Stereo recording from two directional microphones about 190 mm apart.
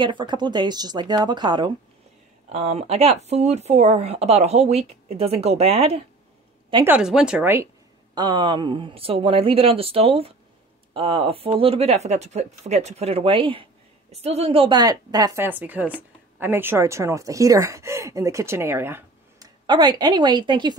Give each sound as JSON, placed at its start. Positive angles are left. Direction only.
{"t": 0.0, "sound": "speech", "side_deg": -25}
{"t": 2.5, "sound": "speech", "side_deg": -35}
{"t": 6.9, "sound": "speech", "side_deg": -5}
{"t": 8.1, "sound": "a woman's voice", "side_deg": -25}